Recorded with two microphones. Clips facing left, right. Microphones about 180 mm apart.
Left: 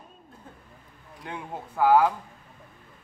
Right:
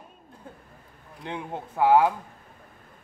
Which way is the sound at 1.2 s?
25° right (ahead or behind).